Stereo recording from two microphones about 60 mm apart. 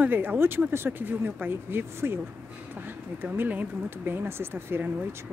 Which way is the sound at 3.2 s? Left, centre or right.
Right.